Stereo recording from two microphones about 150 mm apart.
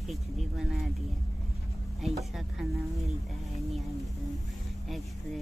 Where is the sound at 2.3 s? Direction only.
Centre (ahead or behind).